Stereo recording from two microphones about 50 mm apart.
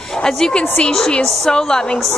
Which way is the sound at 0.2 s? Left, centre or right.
Centre.